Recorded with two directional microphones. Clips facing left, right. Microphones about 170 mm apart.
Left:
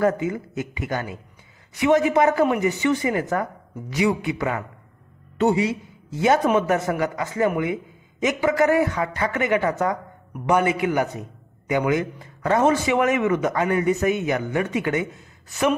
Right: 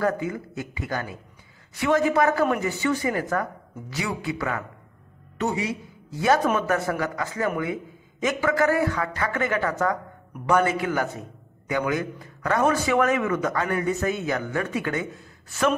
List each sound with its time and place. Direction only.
0.0 s a man's voice: 20° left (ahead or behind)